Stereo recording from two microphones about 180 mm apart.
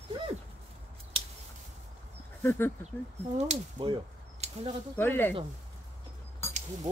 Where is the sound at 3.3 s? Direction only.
35° right (ahead or behind).